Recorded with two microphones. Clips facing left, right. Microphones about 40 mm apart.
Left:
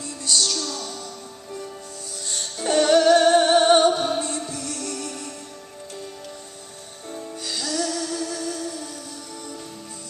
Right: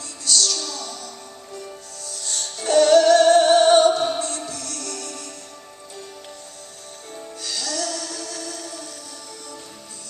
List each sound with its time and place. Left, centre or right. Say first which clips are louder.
0.0 s music: right 1 dB; centre
0.5 s music: even; centre
2.2 s music: even; centre
4.2 s music: even; centre
7.3 s music: left 1 dB; centre